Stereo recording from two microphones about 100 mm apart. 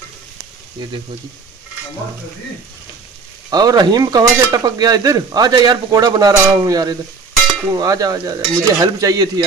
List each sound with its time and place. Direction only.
0.8 s speech: 50° right (ahead or behind)
3.4 s speech: 40° right (ahead or behind)